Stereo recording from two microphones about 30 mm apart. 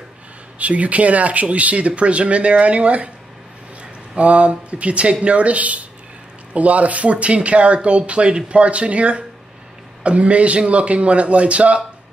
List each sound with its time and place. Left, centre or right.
0.6 s speech: right
4.2 s speech: right